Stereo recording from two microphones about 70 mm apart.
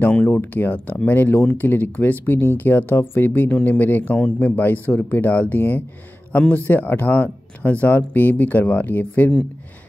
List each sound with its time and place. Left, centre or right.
0.0 s speech: centre
0.3 s speech: left
4.8 s speech: left